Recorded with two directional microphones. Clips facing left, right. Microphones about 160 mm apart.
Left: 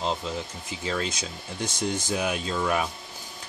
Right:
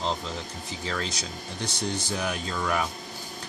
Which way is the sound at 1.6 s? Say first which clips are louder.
Left 2 dB; 45° left (ahead or behind).